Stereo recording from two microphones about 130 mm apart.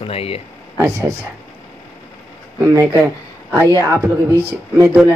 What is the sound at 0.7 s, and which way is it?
Speech, 20° right (ahead or behind).